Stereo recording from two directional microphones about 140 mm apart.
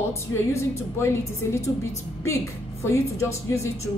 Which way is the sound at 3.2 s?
20° left (ahead or behind).